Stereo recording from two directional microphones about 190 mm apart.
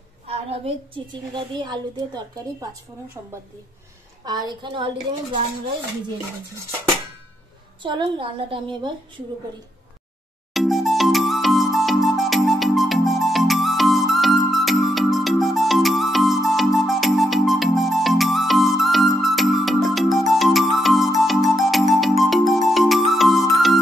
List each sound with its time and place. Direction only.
0.3 s a woman's voice: 30° right (ahead or behind)
7.8 s a woman's voice: 25° right (ahead or behind)
10.5 s music: centre (ahead or behind)